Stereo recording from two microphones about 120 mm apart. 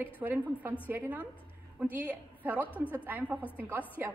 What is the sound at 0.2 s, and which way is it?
A woman's voice, 15° right (ahead or behind).